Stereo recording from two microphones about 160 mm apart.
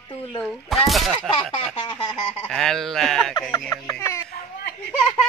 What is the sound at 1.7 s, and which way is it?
Speech, 30° left (ahead or behind).